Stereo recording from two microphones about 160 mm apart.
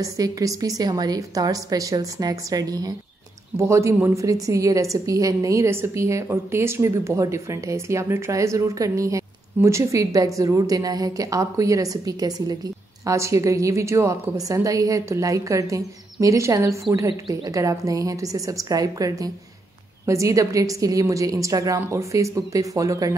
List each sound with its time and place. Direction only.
0.0 s a woman's voice: 20° right (ahead or behind)